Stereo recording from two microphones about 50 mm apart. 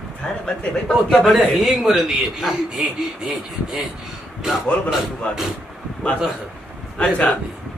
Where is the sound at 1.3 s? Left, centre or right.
Centre.